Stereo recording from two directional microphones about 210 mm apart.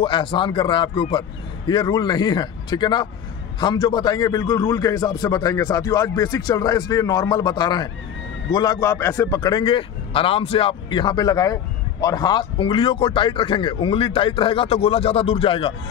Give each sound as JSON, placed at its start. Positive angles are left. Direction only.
{"t": 0.0, "sound": "a man's voice", "side_deg": 25}